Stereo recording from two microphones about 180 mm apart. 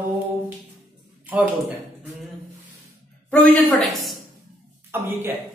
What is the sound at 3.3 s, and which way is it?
Speech, 5° left (ahead or behind).